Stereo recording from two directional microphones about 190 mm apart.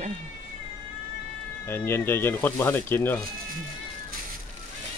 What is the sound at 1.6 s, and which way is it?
Speech, 10° left (ahead or behind).